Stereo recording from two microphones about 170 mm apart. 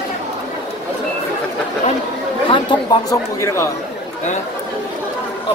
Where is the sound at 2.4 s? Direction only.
30° left (ahead or behind).